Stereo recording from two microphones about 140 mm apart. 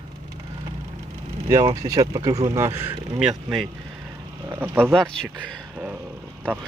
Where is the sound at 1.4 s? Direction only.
25° right (ahead or behind).